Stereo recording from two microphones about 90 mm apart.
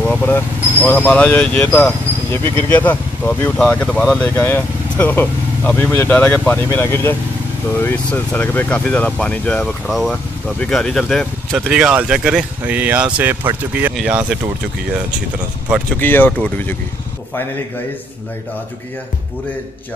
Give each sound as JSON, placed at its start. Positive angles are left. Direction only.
{"t": 0.2, "sound": "speech", "side_deg": 20}
{"t": 4.2, "sound": "speech", "side_deg": 20}
{"t": 7.8, "sound": "speech", "side_deg": 15}
{"t": 9.8, "sound": "speech", "side_deg": 0}
{"t": 11.5, "sound": "speech", "side_deg": -15}
{"t": 16.0, "sound": "speech", "side_deg": 20}